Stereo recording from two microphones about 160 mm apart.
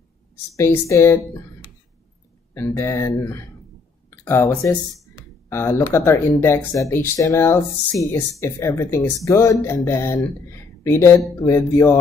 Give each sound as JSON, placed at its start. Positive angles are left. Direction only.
{"t": 0.6, "sound": "speech", "side_deg": 20}
{"t": 2.5, "sound": "speech", "side_deg": 15}